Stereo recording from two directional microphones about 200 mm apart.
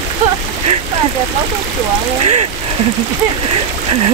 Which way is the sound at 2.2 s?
30° right (ahead or behind).